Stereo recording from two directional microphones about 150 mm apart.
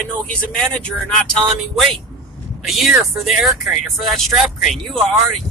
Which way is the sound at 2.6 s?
Centre (ahead or behind).